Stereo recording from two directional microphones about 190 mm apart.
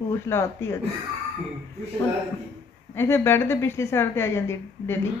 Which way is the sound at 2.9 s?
10° left (ahead or behind).